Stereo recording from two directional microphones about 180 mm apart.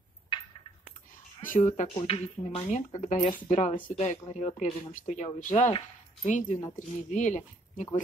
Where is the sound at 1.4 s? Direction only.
45° left (ahead or behind).